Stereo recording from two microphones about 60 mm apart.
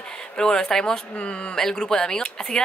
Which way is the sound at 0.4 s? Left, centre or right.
Centre.